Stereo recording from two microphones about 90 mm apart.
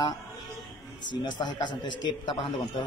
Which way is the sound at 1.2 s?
60° left (ahead or behind).